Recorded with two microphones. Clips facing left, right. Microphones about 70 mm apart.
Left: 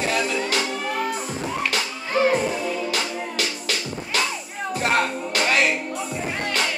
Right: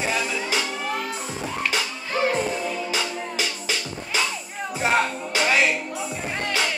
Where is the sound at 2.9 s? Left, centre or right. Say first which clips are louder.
Left 1 dB; centre.